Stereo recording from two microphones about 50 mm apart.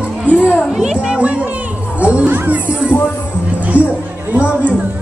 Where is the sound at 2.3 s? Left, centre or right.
Right.